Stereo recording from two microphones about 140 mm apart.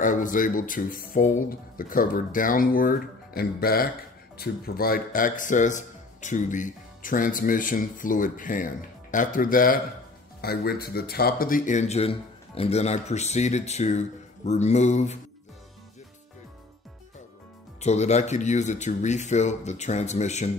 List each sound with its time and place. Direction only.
0.0 s speech: 70° left (ahead or behind)
17.7 s speech: 55° left (ahead or behind)